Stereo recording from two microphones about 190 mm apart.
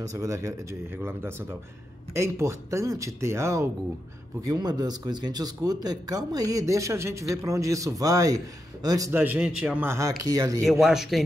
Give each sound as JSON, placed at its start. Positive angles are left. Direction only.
{"t": 0.1, "sound": "speech", "side_deg": -15}
{"t": 10.6, "sound": "speech", "side_deg": 0}